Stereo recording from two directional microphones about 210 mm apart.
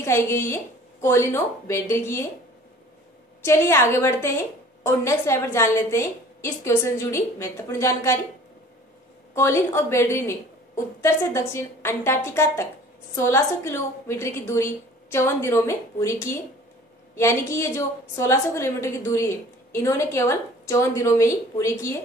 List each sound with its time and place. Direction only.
0.0 s a woman's voice: 10° left (ahead or behind)
3.4 s a woman's voice: 10° left (ahead or behind)
9.3 s a woman's voice: 10° left (ahead or behind)